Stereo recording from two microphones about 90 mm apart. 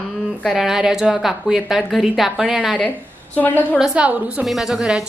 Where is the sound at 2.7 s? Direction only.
15° left (ahead or behind).